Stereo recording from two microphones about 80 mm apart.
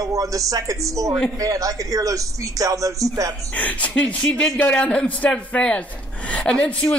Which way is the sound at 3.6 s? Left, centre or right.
Centre.